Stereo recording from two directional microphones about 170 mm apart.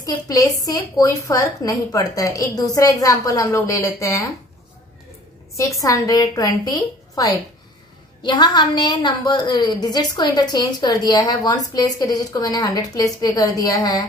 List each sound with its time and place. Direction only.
0.0 s a woman's voice: 20° left (ahead or behind)
5.6 s a woman's voice: 20° left (ahead or behind)